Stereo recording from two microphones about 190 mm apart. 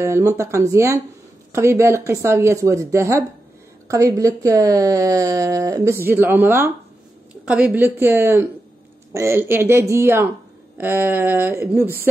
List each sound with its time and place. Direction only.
0.0 s speech: 15° right (ahead or behind)